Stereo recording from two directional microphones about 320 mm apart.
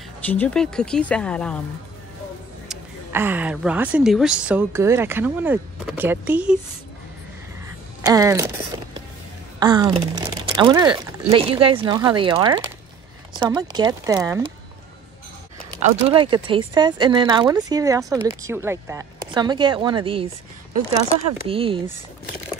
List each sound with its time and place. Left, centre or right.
0.2 s a woman's voice: centre
2.7 s a woman's voice: centre
8.0 s speech: centre
15.8 s speech: centre
21.5 s speech: centre